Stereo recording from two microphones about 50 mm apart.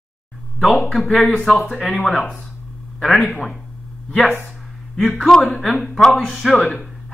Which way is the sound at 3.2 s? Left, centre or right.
Centre.